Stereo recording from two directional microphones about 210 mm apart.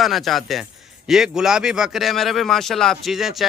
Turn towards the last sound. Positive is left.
turn(degrees=0)  # may be behind; listen again after turning